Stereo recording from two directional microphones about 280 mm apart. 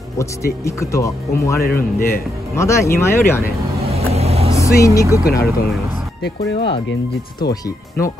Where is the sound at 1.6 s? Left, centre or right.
Left.